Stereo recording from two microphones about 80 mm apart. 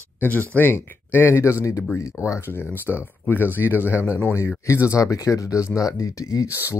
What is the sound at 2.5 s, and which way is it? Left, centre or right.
Speech, left.